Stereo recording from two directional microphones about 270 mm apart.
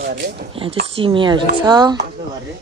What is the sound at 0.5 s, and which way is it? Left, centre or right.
Speech, centre.